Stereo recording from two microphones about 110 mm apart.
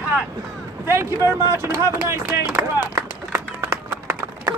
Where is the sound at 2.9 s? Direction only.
30° right (ahead or behind).